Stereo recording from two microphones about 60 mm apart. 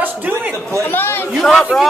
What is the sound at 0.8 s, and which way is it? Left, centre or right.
Speech, left.